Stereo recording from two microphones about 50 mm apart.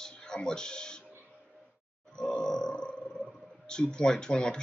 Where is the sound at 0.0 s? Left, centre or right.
Centre.